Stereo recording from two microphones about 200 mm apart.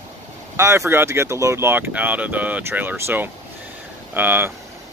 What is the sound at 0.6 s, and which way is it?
Speech, 15° right (ahead or behind).